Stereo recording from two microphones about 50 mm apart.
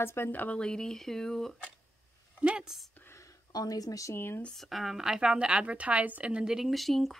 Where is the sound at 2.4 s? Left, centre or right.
Centre.